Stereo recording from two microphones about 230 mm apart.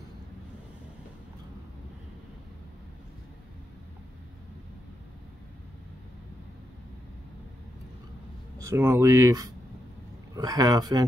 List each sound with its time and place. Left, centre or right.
8.5 s speech: centre